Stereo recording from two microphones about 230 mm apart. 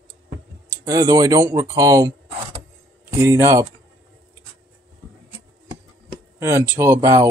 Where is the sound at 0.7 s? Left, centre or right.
Centre.